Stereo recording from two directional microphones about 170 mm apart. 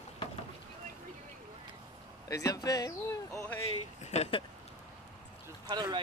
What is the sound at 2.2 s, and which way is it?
Speech, 20° left (ahead or behind).